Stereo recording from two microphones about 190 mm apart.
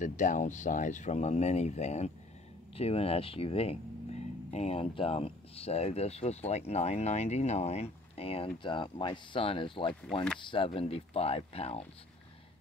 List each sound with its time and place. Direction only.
0.0 s speech: 40° left (ahead or behind)